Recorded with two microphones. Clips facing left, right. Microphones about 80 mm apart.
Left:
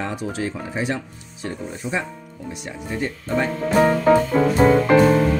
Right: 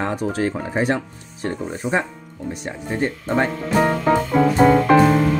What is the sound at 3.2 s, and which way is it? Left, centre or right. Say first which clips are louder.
Speech: right 1 dB; right.